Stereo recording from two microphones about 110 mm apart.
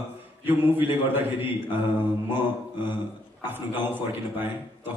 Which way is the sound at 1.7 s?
20° right (ahead or behind).